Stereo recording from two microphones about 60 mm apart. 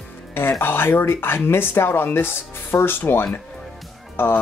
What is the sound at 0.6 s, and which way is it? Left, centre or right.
Speech, left.